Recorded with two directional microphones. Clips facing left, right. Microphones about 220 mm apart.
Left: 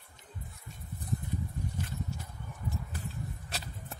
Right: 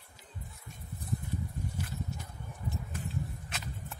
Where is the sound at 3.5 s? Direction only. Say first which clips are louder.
Even; 35° left (ahead or behind).